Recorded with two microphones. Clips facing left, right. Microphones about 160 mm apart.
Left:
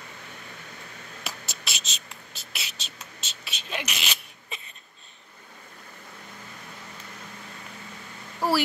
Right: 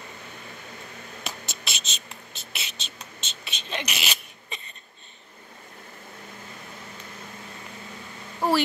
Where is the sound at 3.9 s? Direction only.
Centre (ahead or behind).